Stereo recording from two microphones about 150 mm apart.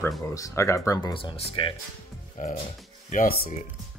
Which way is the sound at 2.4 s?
60° left (ahead or behind).